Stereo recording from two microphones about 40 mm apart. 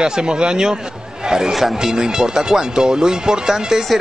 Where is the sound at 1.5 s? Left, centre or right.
Centre.